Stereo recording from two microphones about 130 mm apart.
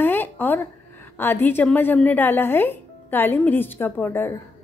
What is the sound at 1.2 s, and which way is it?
A woman's voice, 15° left (ahead or behind).